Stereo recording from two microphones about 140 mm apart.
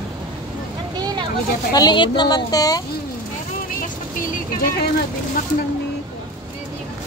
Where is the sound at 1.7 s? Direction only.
30° left (ahead or behind).